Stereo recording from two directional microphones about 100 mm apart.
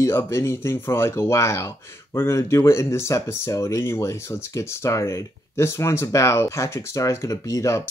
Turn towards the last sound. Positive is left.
turn(degrees=30)  # may be behind; listen again after turning